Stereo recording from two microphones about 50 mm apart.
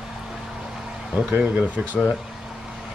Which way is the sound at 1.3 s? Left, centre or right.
Right.